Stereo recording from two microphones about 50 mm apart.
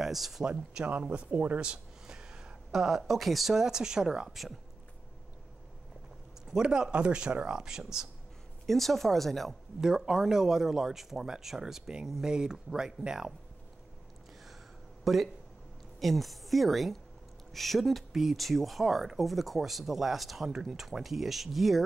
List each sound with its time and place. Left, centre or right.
0.0 s speech: centre
0.8 s speech: right
1.6 s a sound: centre
2.7 s speech: centre
6.4 s speech: centre
8.6 s speech: centre
9.8 s speech: centre
15.1 s speech: centre